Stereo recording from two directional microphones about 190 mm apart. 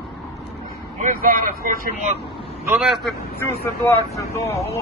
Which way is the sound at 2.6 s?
5° right (ahead or behind).